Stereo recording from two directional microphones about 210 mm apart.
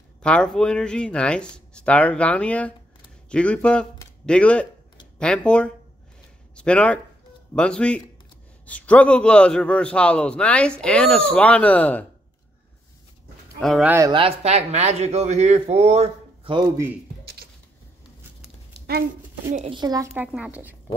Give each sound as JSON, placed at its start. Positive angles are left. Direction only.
{"t": 0.2, "sound": "a man's voice", "side_deg": 5}
{"t": 13.6, "sound": "a man's voice", "side_deg": 0}
{"t": 13.9, "sound": "speech", "side_deg": -20}
{"t": 17.2, "sound": "a sound", "side_deg": -50}
{"t": 19.5, "sound": "speech", "side_deg": -30}
{"t": 19.8, "sound": "speech", "side_deg": -15}
{"t": 20.3, "sound": "a man's voice", "side_deg": -5}